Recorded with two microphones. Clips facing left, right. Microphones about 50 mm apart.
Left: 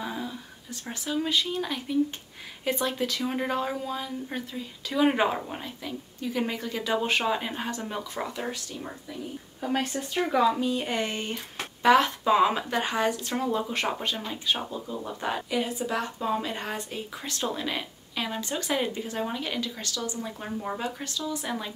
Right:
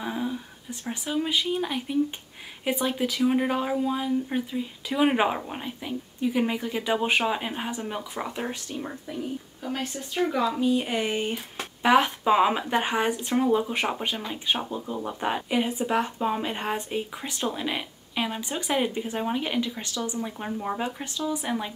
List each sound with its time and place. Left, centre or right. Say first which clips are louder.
0.0 s a sound: right 4 dB; centre
0.8 s speech: right 1 dB; centre
8.3 s speech: right 1 dB; right
9.6 s speech: left 6 dB; left
10.6 s speech: right 3 dB; centre